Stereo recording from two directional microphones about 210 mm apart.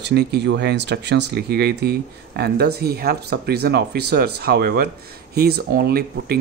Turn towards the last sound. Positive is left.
turn(degrees=-45)  # may be behind; listen again after turning